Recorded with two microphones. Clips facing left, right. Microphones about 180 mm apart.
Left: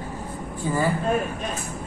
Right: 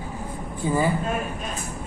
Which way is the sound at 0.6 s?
15° right (ahead or behind).